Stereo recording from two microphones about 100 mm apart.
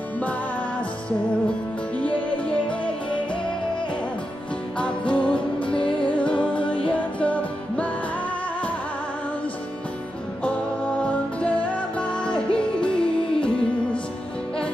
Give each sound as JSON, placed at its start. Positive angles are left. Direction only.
{"t": 2.0, "sound": "music", "side_deg": 15}
{"t": 4.7, "sound": "music", "side_deg": 10}
{"t": 5.3, "sound": "music", "side_deg": 55}
{"t": 6.1, "sound": "music", "side_deg": 10}
{"t": 11.0, "sound": "music", "side_deg": 10}